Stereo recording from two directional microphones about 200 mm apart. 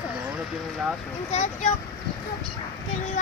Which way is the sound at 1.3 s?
35° left (ahead or behind).